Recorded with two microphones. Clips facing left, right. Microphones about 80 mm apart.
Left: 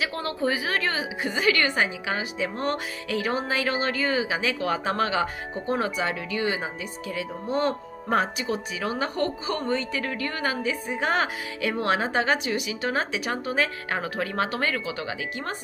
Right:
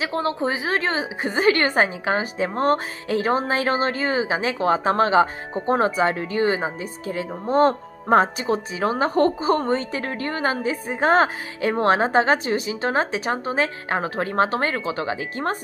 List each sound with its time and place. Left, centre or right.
0.0 s a woman's voice: right